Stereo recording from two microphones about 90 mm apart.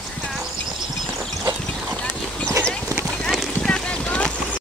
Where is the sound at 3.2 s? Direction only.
5° left (ahead or behind).